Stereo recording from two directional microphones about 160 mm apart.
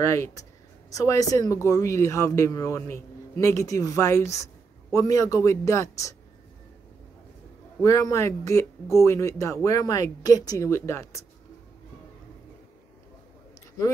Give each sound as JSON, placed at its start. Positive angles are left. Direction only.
{"t": 0.0, "sound": "speech", "side_deg": 20}
{"t": 7.8, "sound": "speech", "side_deg": 20}